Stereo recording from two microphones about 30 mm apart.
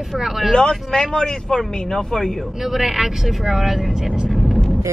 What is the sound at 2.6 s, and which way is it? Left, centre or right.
Speech, centre.